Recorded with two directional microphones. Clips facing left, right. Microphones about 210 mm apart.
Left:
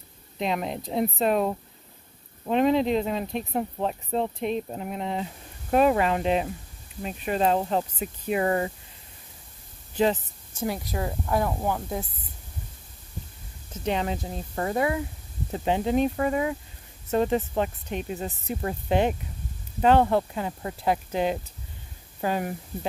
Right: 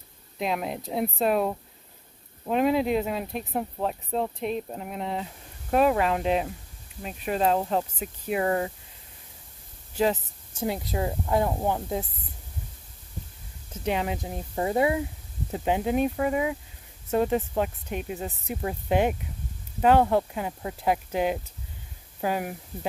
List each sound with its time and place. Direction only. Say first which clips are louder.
0.4 s speech: left 1 dB; 5° right (ahead or behind)
10.6 s speech: right 1 dB; 25° right (ahead or behind)
13.8 s speech: even; 10° right (ahead or behind)
15.5 s speech: left 1 dB; 10° right (ahead or behind)